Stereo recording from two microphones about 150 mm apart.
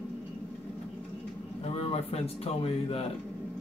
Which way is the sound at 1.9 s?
40° left (ahead or behind).